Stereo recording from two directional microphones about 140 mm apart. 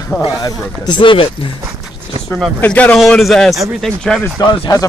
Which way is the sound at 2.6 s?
10° left (ahead or behind).